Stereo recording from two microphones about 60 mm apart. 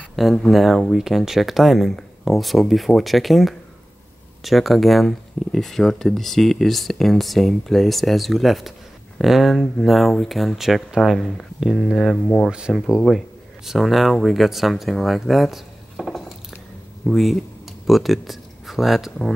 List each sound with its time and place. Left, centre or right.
0.1 s speech: centre
11.1 s speech: centre
12.4 s speech: centre
12.7 s speech: centre